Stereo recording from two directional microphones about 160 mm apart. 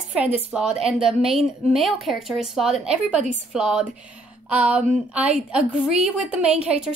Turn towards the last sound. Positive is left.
turn(degrees=-5)  # may be behind; listen again after turning